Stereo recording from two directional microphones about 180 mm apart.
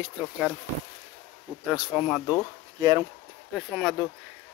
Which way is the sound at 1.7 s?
Centre (ahead or behind).